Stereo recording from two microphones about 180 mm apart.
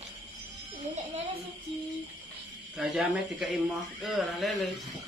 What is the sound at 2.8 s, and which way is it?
Speech, 5° right (ahead or behind).